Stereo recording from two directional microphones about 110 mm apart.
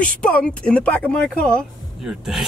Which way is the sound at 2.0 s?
5° right (ahead or behind).